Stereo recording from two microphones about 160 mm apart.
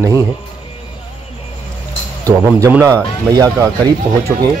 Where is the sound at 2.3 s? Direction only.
20° right (ahead or behind).